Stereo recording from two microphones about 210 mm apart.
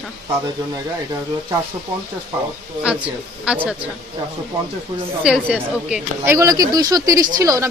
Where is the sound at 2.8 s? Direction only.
5° right (ahead or behind).